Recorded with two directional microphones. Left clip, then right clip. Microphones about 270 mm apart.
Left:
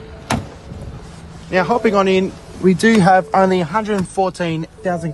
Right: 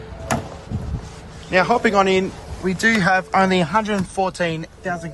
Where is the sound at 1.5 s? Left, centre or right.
Centre.